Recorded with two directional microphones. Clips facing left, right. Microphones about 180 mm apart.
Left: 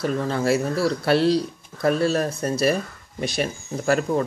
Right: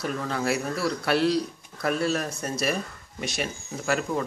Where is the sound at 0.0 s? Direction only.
35° left (ahead or behind).